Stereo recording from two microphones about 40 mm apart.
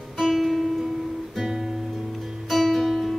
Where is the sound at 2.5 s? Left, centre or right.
Centre.